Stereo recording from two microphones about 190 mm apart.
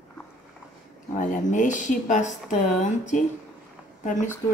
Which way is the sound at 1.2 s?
40° left (ahead or behind).